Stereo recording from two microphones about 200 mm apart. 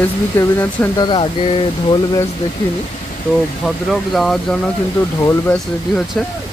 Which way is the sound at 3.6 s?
Centre (ahead or behind).